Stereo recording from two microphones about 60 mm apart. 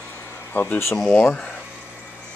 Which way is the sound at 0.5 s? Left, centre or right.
Left.